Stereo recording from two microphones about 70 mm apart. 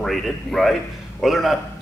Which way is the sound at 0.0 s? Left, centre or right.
Centre.